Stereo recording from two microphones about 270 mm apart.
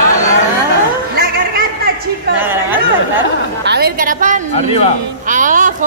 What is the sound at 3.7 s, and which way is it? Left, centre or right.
A woman's voice, right.